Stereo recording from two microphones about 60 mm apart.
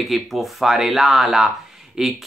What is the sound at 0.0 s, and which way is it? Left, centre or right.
Speech, centre.